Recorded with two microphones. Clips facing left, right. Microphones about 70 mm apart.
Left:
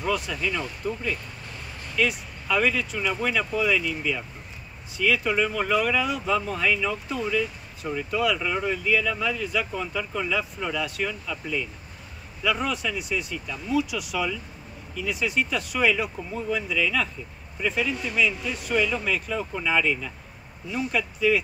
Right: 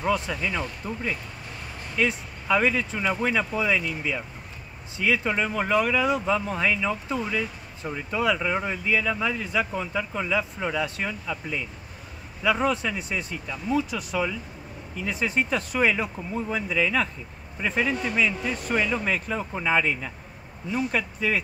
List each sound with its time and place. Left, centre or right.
0.0 s speech: right